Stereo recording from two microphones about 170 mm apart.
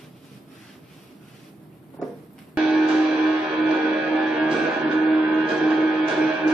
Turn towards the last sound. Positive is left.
turn(degrees=-5)  # may be behind; listen again after turning